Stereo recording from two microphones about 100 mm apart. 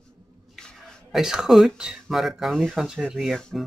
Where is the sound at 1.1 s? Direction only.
5° right (ahead or behind).